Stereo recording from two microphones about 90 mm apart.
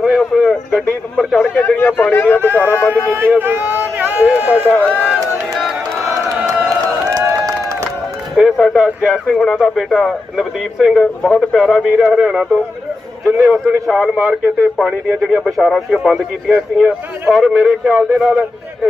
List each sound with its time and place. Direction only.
0.0 s a sound: 5° right (ahead or behind)
0.7 s speech: centre (ahead or behind)
1.6 s speech: 25° left (ahead or behind)
3.1 s speech: 25° right (ahead or behind)
4.6 s speech: 15° left (ahead or behind)
5.5 s crowd: centre (ahead or behind)
7.1 s run: 35° right (ahead or behind)
8.4 s speech: centre (ahead or behind)
10.3 s a man's voice: 5° right (ahead or behind)
13.8 s speech: 5° right (ahead or behind)